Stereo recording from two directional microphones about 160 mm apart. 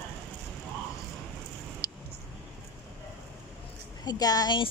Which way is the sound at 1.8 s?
25° left (ahead or behind).